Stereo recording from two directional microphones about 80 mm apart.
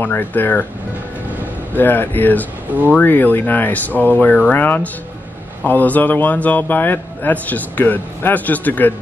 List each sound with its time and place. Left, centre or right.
0.0 s a man's voice: left
1.7 s a man's voice: left